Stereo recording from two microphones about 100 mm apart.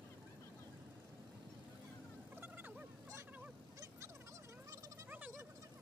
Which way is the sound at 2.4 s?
20° right (ahead or behind).